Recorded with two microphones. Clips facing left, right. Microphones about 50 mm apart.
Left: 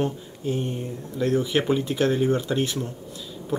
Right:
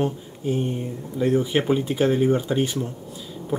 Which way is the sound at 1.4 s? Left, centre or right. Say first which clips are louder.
Right 1 dB; centre.